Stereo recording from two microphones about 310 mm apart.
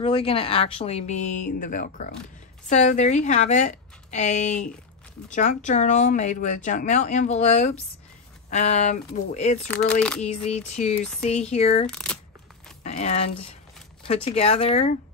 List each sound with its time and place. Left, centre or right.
0.0 s speech: centre
9.7 s speech: centre
10.2 s speech: left
11.9 s speech: centre
12.8 s speech: left